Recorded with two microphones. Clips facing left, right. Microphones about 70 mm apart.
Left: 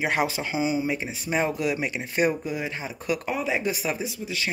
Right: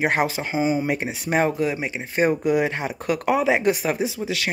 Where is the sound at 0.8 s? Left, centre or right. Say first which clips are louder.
Right 4 dB; right.